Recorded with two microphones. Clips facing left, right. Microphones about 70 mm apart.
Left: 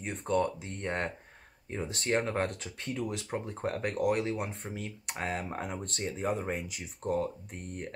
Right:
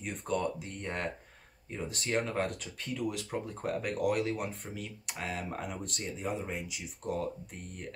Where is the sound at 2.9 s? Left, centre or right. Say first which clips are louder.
Even; left.